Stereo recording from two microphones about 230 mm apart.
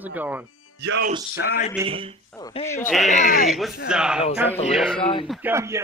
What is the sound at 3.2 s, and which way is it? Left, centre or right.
Speech, left.